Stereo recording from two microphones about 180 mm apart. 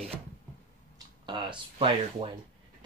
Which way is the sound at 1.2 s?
25° right (ahead or behind).